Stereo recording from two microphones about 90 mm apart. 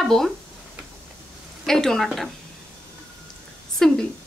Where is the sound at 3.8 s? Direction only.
5° left (ahead or behind).